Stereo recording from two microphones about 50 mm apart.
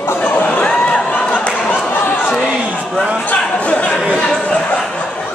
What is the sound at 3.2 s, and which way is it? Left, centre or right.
Speech, left.